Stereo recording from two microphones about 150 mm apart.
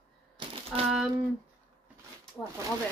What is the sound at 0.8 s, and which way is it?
Speech, centre (ahead or behind).